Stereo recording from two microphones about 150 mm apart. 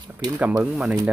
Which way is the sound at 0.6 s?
10° right (ahead or behind).